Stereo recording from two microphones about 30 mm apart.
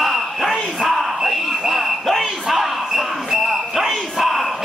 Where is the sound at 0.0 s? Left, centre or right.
Centre.